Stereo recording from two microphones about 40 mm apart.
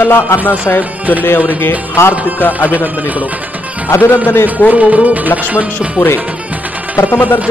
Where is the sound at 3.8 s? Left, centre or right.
Left.